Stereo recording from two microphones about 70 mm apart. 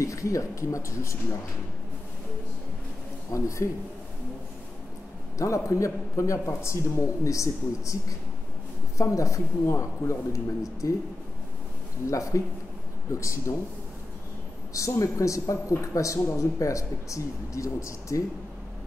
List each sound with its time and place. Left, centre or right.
0.0 s a man's voice: left
3.3 s a man's voice: left
5.4 s a man's voice: left
12.1 s a man's voice: left
14.7 s a man's voice: left